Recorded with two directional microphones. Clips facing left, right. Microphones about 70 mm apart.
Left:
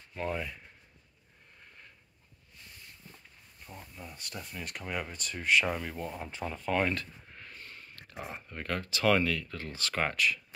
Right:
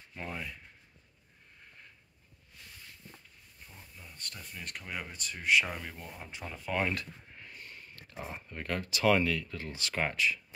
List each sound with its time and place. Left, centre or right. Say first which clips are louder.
0.1 s speech: left 6 dB; centre
3.6 s a sound: left 7 dB; left
4.2 s speech: left 2 dB; centre
6.4 s speech: left 3 dB; centre
7.5 s a sound: even; right
8.2 s speech: left 1 dB; centre
8.5 s speech: even; right